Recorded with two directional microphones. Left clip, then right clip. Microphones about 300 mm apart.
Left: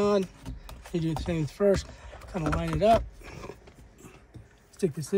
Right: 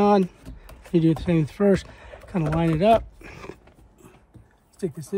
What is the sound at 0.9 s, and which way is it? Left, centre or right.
Speech, right.